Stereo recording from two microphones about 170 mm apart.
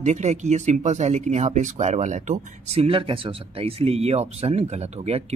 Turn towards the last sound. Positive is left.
turn(degrees=-35)  # may be behind; listen again after turning